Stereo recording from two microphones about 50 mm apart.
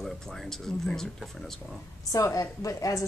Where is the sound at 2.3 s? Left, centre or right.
Left.